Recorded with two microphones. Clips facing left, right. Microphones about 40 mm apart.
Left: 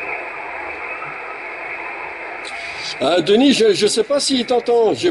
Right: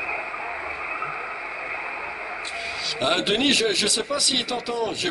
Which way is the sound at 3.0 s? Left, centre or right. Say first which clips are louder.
Left 9 dB; centre.